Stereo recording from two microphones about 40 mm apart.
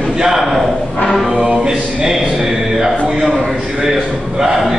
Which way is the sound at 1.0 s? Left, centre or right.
Left.